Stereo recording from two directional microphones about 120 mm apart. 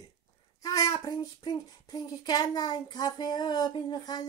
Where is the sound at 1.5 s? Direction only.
35° left (ahead or behind).